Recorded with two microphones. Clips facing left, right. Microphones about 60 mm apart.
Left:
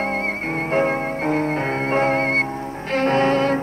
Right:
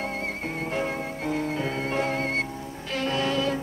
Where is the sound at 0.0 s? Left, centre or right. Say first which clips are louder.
Left 7 dB; left.